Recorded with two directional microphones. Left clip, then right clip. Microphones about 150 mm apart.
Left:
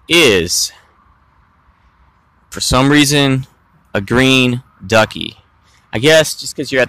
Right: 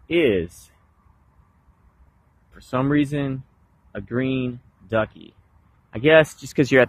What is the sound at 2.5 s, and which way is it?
Speech, 45° left (ahead or behind).